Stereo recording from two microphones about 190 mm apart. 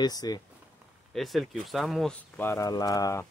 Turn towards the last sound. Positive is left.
turn(degrees=20)  # may be behind; listen again after turning